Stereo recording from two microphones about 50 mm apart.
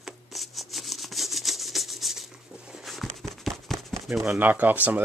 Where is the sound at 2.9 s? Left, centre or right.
Centre.